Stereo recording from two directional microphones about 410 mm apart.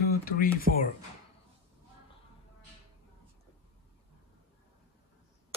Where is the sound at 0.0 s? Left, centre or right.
Left.